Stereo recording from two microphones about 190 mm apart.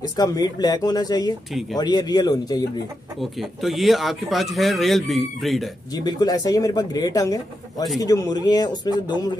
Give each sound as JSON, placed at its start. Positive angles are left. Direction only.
{"t": 0.1, "sound": "speech", "side_deg": 20}
{"t": 3.2, "sound": "speech", "side_deg": 0}
{"t": 6.0, "sound": "speech", "side_deg": 20}